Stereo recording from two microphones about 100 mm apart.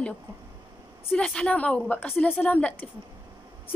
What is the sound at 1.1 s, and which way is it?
A woman's voice, 10° left (ahead or behind).